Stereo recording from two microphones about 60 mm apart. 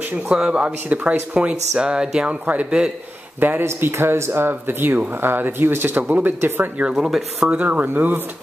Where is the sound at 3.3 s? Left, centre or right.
Right.